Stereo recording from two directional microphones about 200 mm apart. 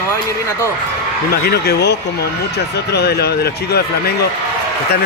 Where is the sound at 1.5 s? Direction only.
55° left (ahead or behind).